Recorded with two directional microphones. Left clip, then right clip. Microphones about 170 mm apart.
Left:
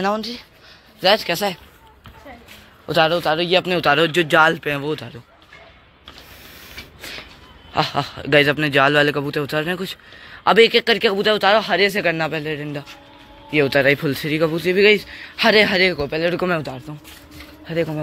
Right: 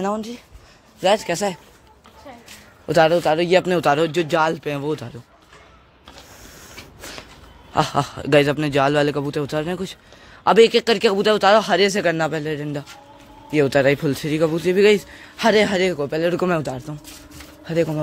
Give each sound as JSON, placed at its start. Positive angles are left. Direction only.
{"t": 1.0, "sound": "a man's voice", "side_deg": -25}
{"t": 2.9, "sound": "speech", "side_deg": -45}
{"t": 4.1, "sound": "speech", "side_deg": 0}
{"t": 7.0, "sound": "vehicle", "side_deg": -35}
{"t": 7.7, "sound": "a man's voice", "side_deg": -30}
{"t": 16.6, "sound": "speech", "side_deg": -40}
{"t": 17.6, "sound": "speech", "side_deg": -25}